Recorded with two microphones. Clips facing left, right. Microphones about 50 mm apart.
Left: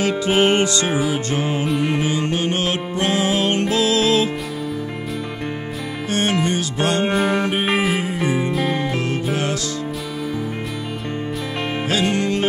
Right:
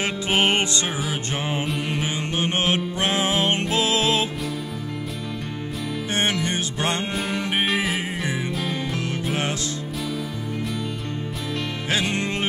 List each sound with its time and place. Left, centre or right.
0.4 s music: right
2.3 s music: right
7.1 s music: centre
11.9 s music: right